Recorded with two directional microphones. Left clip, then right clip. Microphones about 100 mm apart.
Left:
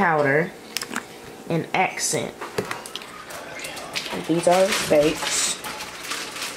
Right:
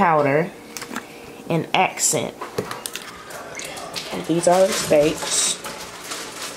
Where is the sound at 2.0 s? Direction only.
55° right (ahead or behind).